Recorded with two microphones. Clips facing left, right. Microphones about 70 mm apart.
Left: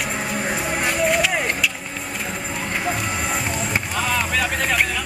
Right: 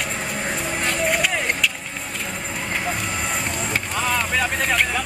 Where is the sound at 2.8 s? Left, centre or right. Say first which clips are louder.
Left 2 dB; centre.